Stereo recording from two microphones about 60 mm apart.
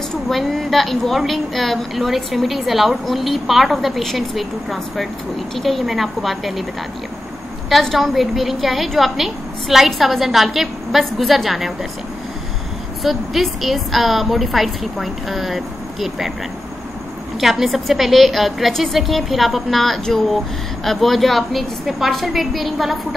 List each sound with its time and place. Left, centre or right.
0.3 s a woman's voice: centre
7.8 s a woman's voice: centre
13.0 s a woman's voice: centre
17.4 s a woman's voice: centre